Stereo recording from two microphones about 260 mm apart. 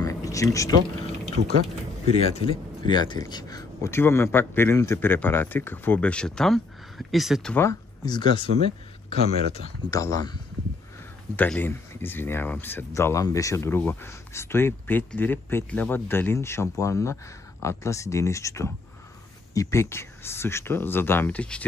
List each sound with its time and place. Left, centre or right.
0.0 s a sound: centre
1.4 s speech: right
2.2 s speech: centre
9.8 s speech: centre